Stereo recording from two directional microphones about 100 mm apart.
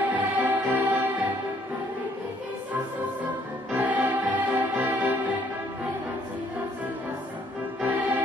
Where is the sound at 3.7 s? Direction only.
15° right (ahead or behind).